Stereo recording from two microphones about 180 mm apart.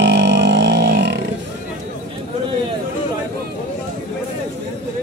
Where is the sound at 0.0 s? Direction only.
70° right (ahead or behind).